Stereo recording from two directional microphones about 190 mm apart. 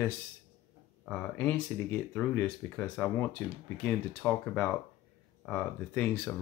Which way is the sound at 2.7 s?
10° left (ahead or behind).